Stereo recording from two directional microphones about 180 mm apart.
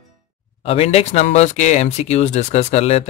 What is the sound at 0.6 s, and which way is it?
Speech, 35° left (ahead or behind).